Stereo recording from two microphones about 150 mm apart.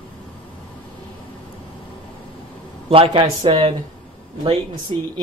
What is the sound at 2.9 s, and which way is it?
Speech, 35° right (ahead or behind).